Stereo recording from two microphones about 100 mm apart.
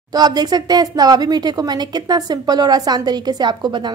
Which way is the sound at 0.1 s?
40° right (ahead or behind).